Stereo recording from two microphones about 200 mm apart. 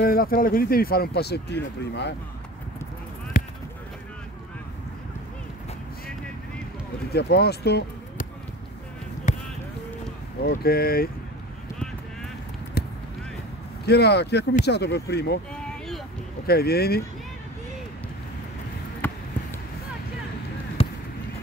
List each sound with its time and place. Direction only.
0.0 s speech: 45° left (ahead or behind)
3.3 s a sound: 45° left (ahead or behind)
7.1 s speech: 55° left (ahead or behind)
10.4 s speech: 50° left (ahead or behind)
12.8 s basketball bounce: 55° left (ahead or behind)
13.8 s speech: 55° left (ahead or behind)
15.5 s a sound: 5° left (ahead or behind)
16.4 s speech: 50° left (ahead or behind)
19.0 s basketball bounce: 10° left (ahead or behind)
20.8 s a sound: 30° left (ahead or behind)